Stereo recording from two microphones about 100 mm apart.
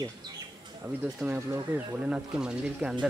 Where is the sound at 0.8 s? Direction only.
15° right (ahead or behind).